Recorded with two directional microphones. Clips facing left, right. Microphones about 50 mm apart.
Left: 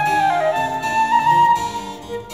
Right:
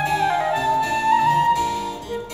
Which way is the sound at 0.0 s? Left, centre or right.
Centre.